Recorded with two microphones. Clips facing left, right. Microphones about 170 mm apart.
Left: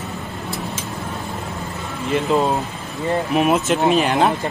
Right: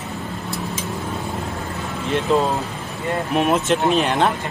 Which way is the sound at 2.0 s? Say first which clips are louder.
Left 1 dB; centre (ahead or behind).